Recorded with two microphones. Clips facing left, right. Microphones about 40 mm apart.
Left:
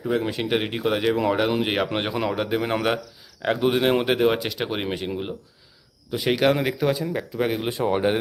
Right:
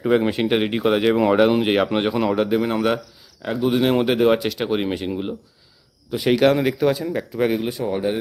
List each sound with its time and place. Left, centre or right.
0.3 s speech: centre
2.6 s a man's voice: centre
3.4 s speech: left
3.7 s speech: centre
7.6 s speech: left